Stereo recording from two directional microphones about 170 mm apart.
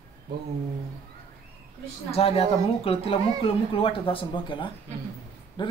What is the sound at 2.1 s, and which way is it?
Speech, 35° left (ahead or behind).